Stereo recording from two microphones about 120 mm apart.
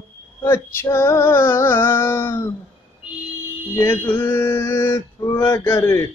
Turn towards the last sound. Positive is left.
turn(degrees=20)  # may be behind; listen again after turning